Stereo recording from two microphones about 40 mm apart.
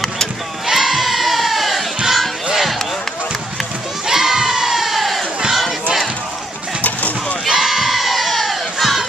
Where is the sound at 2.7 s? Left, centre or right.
Centre.